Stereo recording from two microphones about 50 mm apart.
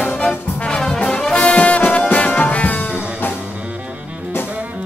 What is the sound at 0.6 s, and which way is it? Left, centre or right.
Brass instrument, left.